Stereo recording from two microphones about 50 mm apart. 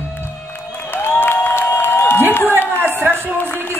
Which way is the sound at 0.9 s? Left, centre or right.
Left.